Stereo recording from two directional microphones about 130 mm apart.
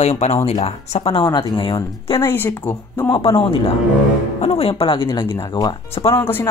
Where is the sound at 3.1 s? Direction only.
45° left (ahead or behind).